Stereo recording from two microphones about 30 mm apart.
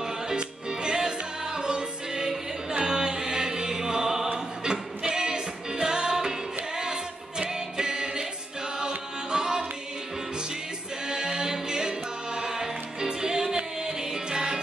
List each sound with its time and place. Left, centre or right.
0.4 s music: right
8.7 s tabla: right
11.1 s music: right